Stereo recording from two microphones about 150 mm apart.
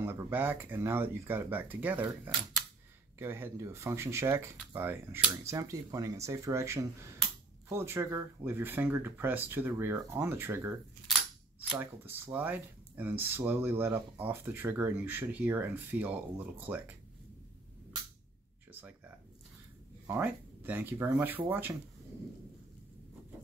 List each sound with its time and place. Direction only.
0.0 s speech: 15° right (ahead or behind)
11.8 s speech: 15° right (ahead or behind)
18.7 s a sound: 10° right (ahead or behind)
20.1 s speech: 15° right (ahead or behind)